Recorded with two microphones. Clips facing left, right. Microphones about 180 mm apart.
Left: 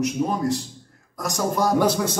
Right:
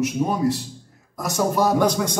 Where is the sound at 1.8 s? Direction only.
10° left (ahead or behind).